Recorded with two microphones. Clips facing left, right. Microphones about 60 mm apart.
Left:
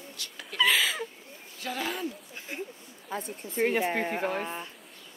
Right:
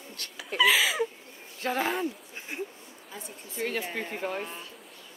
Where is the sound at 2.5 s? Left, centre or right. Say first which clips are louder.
Right 2 dB; centre.